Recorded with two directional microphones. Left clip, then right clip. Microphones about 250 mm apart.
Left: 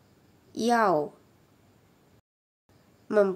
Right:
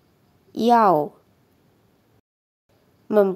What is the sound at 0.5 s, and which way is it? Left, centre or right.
Speech, centre.